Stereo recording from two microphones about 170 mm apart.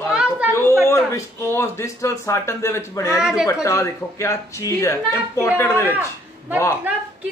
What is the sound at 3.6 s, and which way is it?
Speech, 15° left (ahead or behind).